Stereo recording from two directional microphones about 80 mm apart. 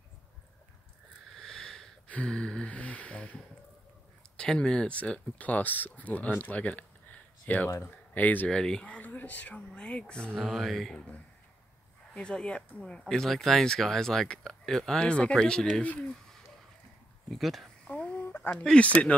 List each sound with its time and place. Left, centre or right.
1.3 s a sound: centre
2.0 s gasp: centre
4.4 s speech: centre
8.5 s speech: centre
10.4 s speech: centre
12.1 s speech: centre
17.3 s speech: centre
17.8 s a sound: centre
18.5 s speech: centre